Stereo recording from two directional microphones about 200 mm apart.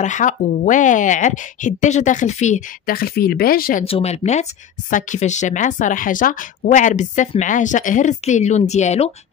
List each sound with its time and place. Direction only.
0.0 s speech: 40° left (ahead or behind)
3.8 s speech: 30° left (ahead or behind)